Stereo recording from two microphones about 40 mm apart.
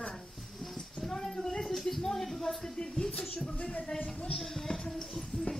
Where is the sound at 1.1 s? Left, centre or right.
Centre.